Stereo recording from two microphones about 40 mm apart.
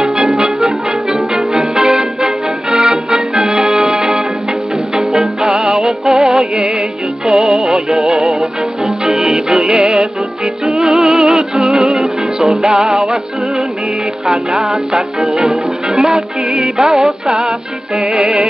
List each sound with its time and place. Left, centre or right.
0.7 s music: centre
14.2 s music: centre
15.2 s music: centre